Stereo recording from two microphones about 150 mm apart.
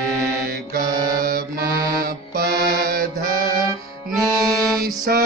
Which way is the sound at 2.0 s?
75° right (ahead or behind).